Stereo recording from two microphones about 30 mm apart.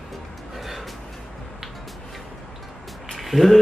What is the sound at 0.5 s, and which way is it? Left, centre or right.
Music, centre.